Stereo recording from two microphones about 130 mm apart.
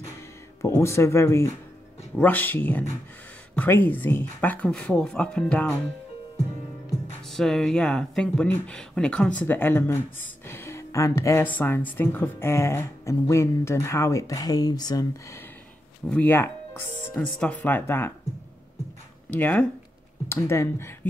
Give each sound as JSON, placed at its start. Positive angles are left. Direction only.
{"t": 0.6, "sound": "speech", "side_deg": 20}
{"t": 7.2, "sound": "speech", "side_deg": 5}
{"t": 16.1, "sound": "speech", "side_deg": 15}
{"t": 19.3, "sound": "speech", "side_deg": 15}